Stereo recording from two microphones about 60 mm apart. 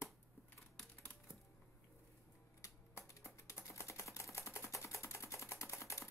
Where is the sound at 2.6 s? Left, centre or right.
Left.